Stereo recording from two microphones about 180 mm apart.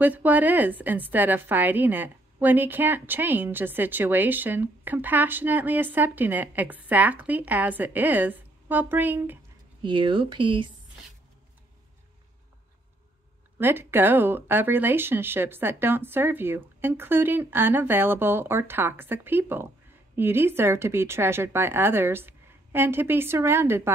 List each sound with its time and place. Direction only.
0.0 s a woman's voice: 10° right (ahead or behind)
9.8 s speech: 25° right (ahead or behind)
13.6 s a woman's voice: 10° right (ahead or behind)